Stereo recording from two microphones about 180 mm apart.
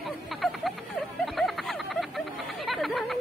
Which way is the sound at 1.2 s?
Centre (ahead or behind).